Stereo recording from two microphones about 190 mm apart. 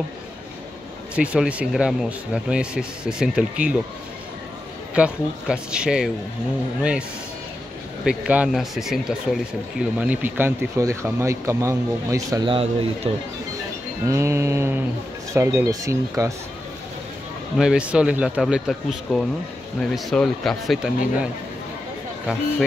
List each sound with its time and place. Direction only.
1.1 s speech: 5° right (ahead or behind)
4.9 s speech: 5° right (ahead or behind); by 13.1 s 25° right (ahead or behind)
14.0 s speech: 15° right (ahead or behind)
17.6 s speech: 5° right (ahead or behind)